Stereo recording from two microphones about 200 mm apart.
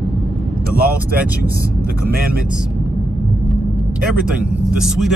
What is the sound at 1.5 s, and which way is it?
Speech, 50° right (ahead or behind).